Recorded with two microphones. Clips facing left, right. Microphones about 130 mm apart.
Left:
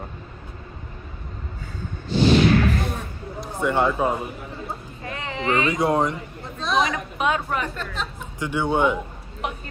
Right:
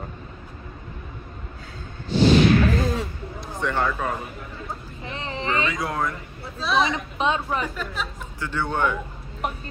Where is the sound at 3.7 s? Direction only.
15° left (ahead or behind).